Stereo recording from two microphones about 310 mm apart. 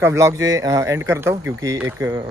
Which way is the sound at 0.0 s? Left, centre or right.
Centre.